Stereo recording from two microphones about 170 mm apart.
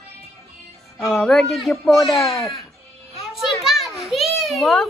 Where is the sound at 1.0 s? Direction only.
Centre (ahead or behind).